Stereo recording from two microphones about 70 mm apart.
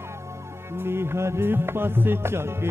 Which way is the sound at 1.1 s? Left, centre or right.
Right.